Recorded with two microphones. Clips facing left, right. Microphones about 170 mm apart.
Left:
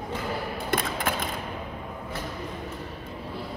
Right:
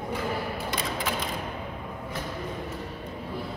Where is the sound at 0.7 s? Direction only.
55° left (ahead or behind).